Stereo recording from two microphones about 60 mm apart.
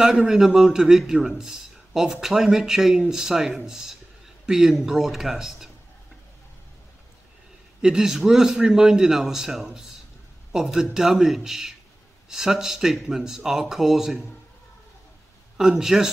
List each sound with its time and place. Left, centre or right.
0.3 s a man's voice: centre
7.8 s a man's voice: centre
15.8 s a man's voice: centre